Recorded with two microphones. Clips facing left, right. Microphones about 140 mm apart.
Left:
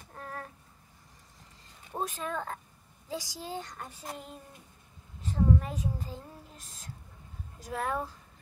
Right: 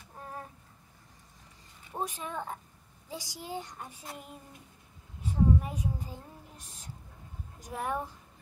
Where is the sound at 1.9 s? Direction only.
15° right (ahead or behind).